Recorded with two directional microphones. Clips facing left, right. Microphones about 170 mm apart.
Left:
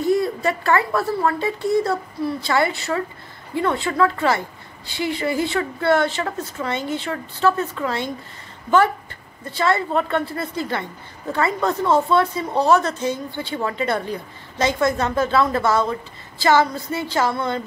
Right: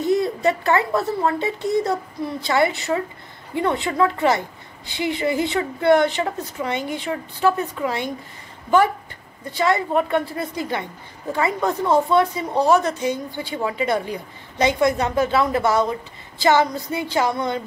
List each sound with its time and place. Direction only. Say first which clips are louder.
0.0 s a woman's voice: even; 20° right (ahead or behind)